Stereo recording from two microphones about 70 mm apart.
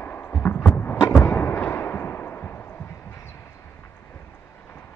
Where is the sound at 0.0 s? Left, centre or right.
Left.